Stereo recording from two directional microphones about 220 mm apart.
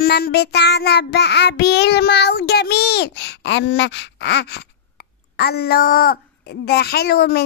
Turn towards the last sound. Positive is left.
turn(degrees=45)  # may be behind; listen again after turning